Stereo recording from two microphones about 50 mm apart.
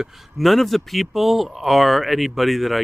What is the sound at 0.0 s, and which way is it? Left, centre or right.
Speech, centre.